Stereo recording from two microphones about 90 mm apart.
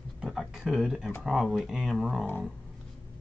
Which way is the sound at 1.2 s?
5° right (ahead or behind).